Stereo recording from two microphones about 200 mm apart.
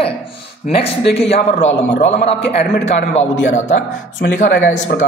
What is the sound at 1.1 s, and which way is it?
Speech, 30° left (ahead or behind).